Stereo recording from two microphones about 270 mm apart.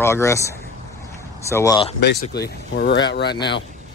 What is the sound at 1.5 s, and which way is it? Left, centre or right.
Speech, centre.